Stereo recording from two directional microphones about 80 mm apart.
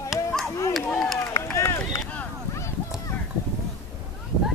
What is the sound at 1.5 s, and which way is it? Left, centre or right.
Run, left.